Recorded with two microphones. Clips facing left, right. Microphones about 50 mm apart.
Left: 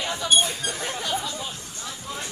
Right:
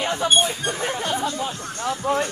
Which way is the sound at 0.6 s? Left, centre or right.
Right.